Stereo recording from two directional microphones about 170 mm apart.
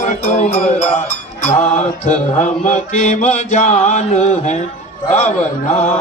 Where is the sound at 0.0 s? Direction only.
45° left (ahead or behind).